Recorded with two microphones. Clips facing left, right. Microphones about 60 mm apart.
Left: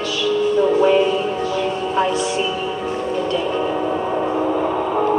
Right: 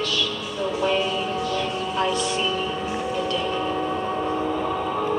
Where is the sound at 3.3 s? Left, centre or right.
Centre.